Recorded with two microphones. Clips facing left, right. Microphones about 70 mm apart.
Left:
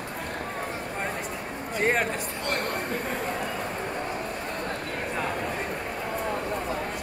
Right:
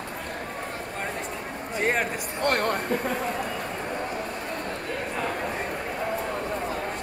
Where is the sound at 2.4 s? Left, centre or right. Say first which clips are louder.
Right 7 dB; right.